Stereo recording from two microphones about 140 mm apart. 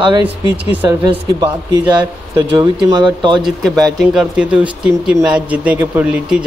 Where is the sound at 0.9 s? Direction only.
30° right (ahead or behind).